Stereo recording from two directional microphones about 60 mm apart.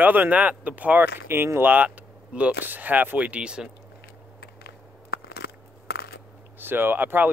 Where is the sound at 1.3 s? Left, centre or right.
Right.